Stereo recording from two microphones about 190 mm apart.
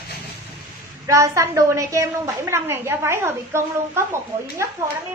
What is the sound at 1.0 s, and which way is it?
A woman's voice, 15° right (ahead or behind).